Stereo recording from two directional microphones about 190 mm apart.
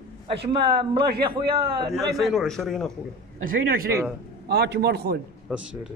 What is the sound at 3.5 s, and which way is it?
A man's voice, 50° right (ahead or behind).